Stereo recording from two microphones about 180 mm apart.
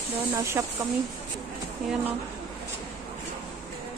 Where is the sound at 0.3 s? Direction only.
15° right (ahead or behind).